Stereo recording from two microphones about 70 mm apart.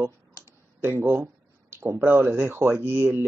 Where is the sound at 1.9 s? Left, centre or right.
Right.